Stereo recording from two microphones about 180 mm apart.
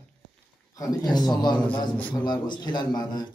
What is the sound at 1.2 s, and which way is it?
Speech, 25° left (ahead or behind).